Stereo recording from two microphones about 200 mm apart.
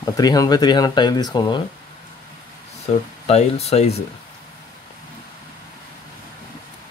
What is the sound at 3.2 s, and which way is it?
Speech, 30° left (ahead or behind).